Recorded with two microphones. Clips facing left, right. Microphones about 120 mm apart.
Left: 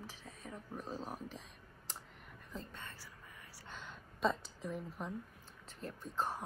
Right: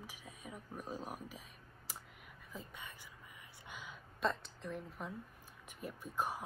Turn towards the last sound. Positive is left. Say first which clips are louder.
# even
turn(degrees=-10)  # may be behind; listen again after turning